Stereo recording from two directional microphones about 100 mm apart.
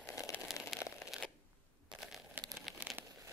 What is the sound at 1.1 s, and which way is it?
Shuffling cards, 5° right (ahead or behind).